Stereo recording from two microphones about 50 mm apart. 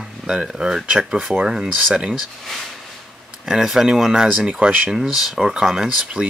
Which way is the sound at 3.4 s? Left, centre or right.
Centre.